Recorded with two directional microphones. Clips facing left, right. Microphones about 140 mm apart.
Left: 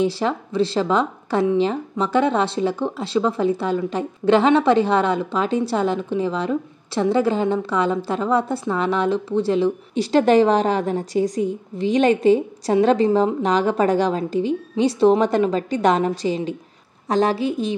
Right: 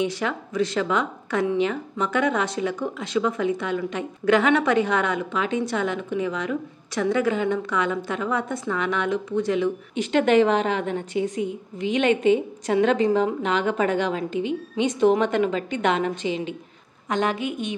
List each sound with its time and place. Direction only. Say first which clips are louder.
0.0 s speech: left 5 dB; 30° left (ahead or behind)